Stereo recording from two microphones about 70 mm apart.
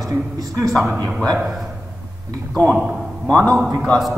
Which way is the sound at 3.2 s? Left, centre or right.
Left.